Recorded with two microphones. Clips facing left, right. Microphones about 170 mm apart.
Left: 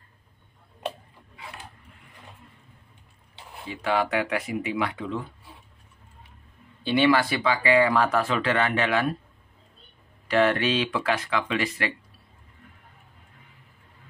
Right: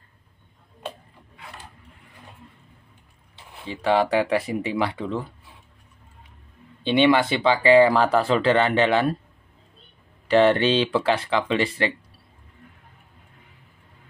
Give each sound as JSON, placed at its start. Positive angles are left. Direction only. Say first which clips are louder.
{"t": 3.6, "sound": "speech", "louder": "right 5 dB", "side_deg": -30}
{"t": 6.8, "sound": "speech", "louder": "right 3 dB", "side_deg": -20}
{"t": 10.2, "sound": "speech", "louder": "right 5 dB", "side_deg": -30}